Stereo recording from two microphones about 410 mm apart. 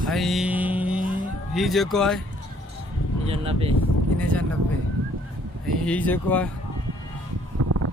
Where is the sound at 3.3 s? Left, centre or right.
Centre.